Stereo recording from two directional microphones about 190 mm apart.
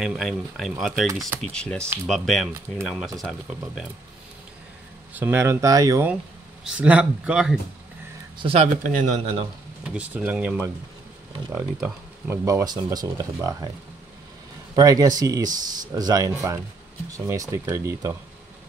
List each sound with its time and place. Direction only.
0.0 s speech: centre (ahead or behind)
5.1 s speech: 10° right (ahead or behind)
6.6 s speech: 5° right (ahead or behind)
8.4 s speech: 30° right (ahead or behind)
8.8 s speech: 40° right (ahead or behind)
9.9 s speech: 10° right (ahead or behind)
14.8 s speech: 20° right (ahead or behind)